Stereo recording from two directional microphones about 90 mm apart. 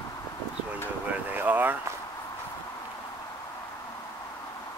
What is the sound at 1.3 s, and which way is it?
Speech, 20° right (ahead or behind).